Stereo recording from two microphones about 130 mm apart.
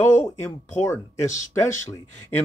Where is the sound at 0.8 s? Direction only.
20° left (ahead or behind).